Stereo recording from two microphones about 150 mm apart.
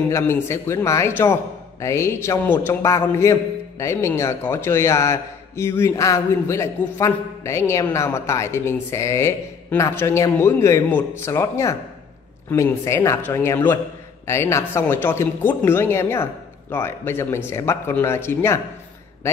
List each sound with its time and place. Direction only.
0.1 s a man's voice: 20° left (ahead or behind)